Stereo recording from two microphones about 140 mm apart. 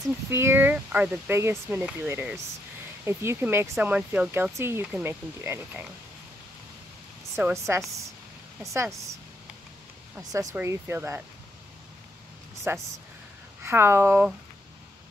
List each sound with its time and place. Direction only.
0.3 s speech: 15° right (ahead or behind)
7.3 s speech: 20° right (ahead or behind)
10.3 s speech: 20° right (ahead or behind)
12.7 s speech: 15° right (ahead or behind)